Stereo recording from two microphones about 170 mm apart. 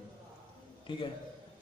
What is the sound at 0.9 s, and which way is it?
Speech, 30° left (ahead or behind).